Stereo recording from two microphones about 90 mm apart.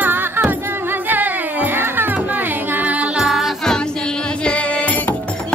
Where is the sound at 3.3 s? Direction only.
Centre (ahead or behind); by 5.1 s 15° left (ahead or behind).